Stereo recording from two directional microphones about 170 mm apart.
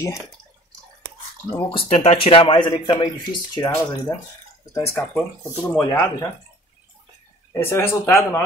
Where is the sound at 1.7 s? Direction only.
35° left (ahead or behind).